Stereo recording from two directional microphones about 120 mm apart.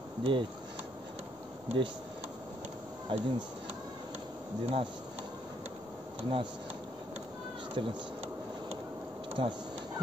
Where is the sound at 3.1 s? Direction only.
45° right (ahead or behind).